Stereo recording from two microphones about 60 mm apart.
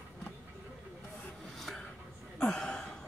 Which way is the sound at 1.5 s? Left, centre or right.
Centre.